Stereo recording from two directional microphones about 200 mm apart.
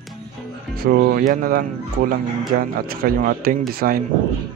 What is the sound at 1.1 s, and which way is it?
Speech, 45° right (ahead or behind).